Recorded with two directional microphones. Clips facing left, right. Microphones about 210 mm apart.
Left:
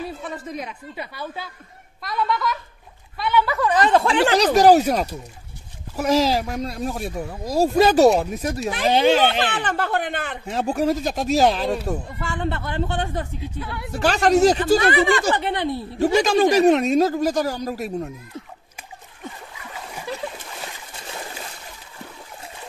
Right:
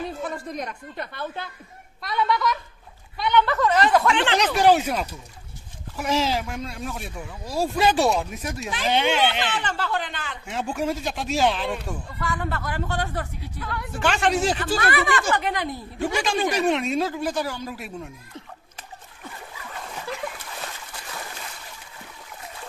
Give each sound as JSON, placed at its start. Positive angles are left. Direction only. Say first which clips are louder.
{"t": 0.2, "sound": "a woman's voice", "louder": "even", "side_deg": 5}
{"t": 3.9, "sound": "speech", "louder": "left 3 dB", "side_deg": 30}
{"t": 9.4, "sound": "speech", "louder": "left 4 dB", "side_deg": 55}
{"t": 10.4, "sound": "speech", "louder": "left 5 dB", "side_deg": 40}
{"t": 13.9, "sound": "speech", "louder": "left 6 dB", "side_deg": 40}
{"t": 14.8, "sound": "speech", "louder": "left 5 dB", "side_deg": 25}